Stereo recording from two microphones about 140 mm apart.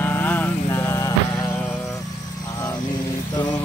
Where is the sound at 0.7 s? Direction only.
20° left (ahead or behind).